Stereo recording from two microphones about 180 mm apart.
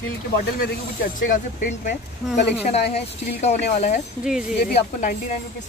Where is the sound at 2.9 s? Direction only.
35° left (ahead or behind).